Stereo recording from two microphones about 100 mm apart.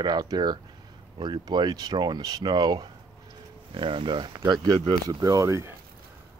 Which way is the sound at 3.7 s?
55° right (ahead or behind).